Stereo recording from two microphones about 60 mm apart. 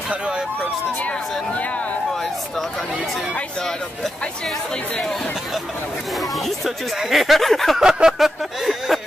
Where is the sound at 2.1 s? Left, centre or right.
Centre.